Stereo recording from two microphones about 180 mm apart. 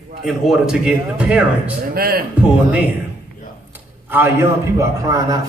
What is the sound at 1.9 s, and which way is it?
Speech, 55° right (ahead or behind).